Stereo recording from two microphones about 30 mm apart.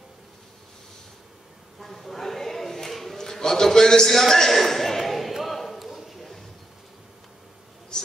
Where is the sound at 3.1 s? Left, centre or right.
Centre.